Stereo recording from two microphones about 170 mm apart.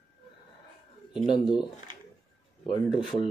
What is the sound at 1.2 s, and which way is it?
Speech, 30° left (ahead or behind).